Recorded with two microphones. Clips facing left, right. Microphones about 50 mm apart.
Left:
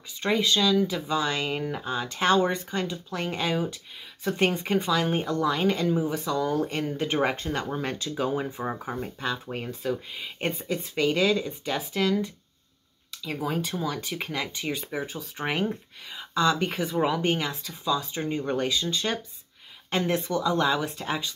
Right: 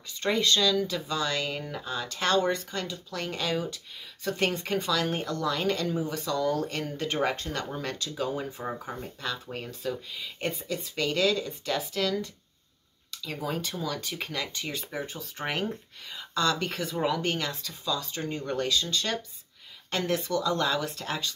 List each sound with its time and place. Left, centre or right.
0.2 s speech: centre